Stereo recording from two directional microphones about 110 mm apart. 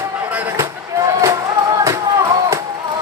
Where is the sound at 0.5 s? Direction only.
30° right (ahead or behind).